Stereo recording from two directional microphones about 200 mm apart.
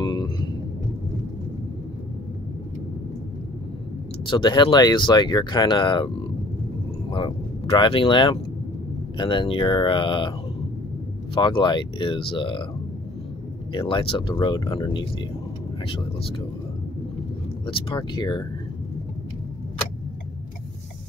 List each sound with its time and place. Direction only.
0.0 s vehicle: 20° left (ahead or behind)
4.3 s speech: 20° left (ahead or behind)
11.3 s speech: 25° left (ahead or behind)
13.7 s speech: 25° left (ahead or behind)
17.6 s speech: 25° left (ahead or behind)